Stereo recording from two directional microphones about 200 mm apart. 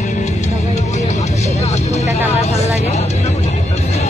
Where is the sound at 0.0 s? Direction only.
35° left (ahead or behind).